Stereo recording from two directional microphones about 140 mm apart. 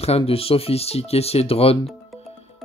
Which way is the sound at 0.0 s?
45° left (ahead or behind).